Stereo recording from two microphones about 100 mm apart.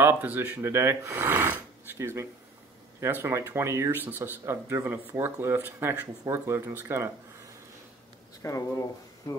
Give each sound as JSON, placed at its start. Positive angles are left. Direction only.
{"t": 0.0, "sound": "speech", "side_deg": -20}
{"t": 8.4, "sound": "speech", "side_deg": 35}